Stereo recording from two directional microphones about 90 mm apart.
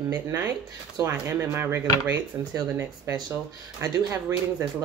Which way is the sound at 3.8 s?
30° right (ahead or behind).